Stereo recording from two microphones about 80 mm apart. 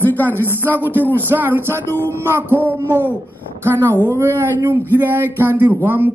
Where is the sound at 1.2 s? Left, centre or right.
Right.